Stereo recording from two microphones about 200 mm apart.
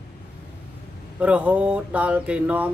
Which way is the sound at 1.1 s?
5° right (ahead or behind).